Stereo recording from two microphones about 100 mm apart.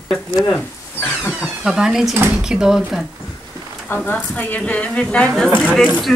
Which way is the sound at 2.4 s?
5° right (ahead or behind).